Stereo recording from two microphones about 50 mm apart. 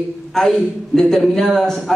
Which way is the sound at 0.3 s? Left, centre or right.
Centre.